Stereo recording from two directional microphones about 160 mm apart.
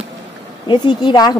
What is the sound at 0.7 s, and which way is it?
Speech, 30° left (ahead or behind).